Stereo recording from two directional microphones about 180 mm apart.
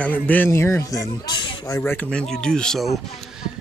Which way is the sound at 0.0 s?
10° left (ahead or behind).